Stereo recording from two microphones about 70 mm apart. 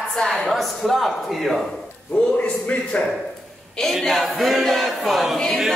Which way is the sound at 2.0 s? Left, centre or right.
Centre.